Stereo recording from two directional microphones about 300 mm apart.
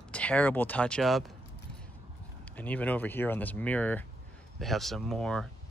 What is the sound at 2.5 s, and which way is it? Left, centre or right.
Speech, centre.